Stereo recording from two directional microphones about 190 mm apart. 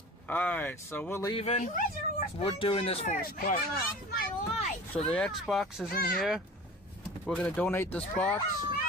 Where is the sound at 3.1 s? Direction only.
50° left (ahead or behind).